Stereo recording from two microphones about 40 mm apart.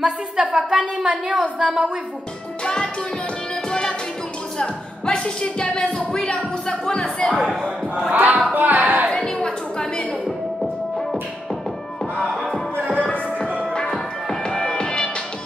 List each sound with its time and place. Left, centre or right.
0.0 s a woman's voice: centre
2.6 s music: centre
4.6 s a sound: left
5.9 s music: left
8.1 s music: right
8.5 s a sound: right
9.1 s a sound: centre
12.2 s music: centre
12.9 s music: left
13.7 s music: centre